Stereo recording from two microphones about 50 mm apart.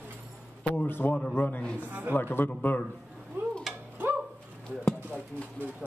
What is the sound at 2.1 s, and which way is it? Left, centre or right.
Speech, left.